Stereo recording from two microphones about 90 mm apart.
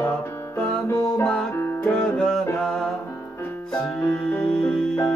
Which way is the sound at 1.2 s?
10° left (ahead or behind).